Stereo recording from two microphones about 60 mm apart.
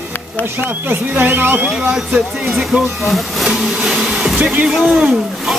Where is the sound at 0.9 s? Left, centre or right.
Right.